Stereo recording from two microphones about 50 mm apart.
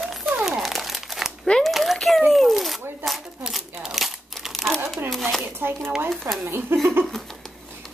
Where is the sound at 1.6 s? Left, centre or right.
Centre.